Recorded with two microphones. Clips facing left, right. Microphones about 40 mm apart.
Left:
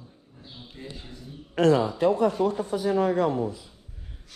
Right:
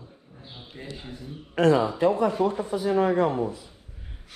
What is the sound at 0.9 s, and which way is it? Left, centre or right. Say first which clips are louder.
Speech: right 3 dB; centre.